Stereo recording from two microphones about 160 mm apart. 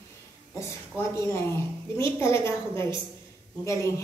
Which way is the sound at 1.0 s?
15° left (ahead or behind).